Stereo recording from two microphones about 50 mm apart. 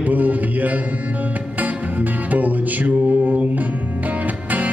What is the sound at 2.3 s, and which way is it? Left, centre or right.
Music, right.